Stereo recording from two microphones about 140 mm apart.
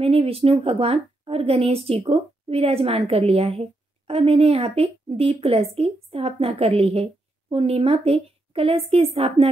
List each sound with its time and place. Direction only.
0.0 s a woman's voice: 45° right (ahead or behind)